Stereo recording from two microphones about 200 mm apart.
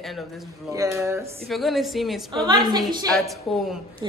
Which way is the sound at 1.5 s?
Centre (ahead or behind).